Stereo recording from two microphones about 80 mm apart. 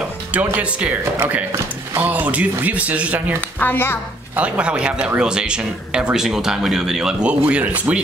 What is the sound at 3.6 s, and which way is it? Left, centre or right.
Speech, left.